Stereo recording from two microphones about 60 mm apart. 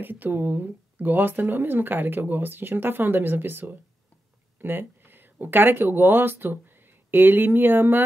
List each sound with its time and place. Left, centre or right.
0.0 s speech: right